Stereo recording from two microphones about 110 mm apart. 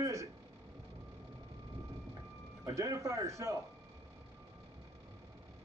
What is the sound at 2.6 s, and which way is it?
Speech, 30° right (ahead or behind).